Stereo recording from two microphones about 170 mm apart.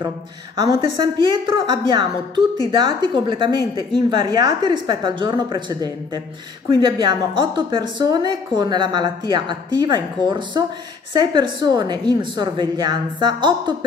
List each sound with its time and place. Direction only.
0.6 s a woman's voice: 30° right (ahead or behind)